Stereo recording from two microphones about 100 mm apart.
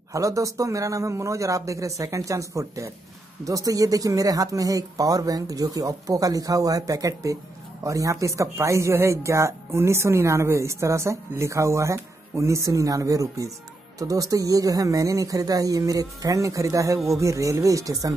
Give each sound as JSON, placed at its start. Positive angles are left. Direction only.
{"t": 0.1, "sound": "speech", "side_deg": -35}